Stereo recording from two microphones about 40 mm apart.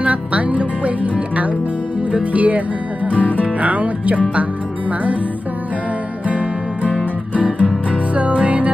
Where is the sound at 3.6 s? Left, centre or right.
Right.